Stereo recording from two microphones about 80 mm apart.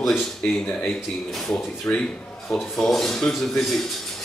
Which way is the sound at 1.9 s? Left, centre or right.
Left.